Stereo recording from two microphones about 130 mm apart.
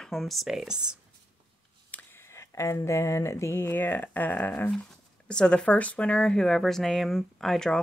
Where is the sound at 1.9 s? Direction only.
15° left (ahead or behind).